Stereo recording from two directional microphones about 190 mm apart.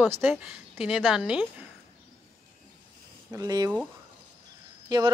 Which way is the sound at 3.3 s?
20° right (ahead or behind).